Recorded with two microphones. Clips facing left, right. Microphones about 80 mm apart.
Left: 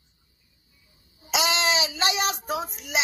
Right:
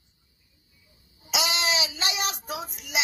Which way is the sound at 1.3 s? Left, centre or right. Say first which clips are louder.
Left 3 dB; left.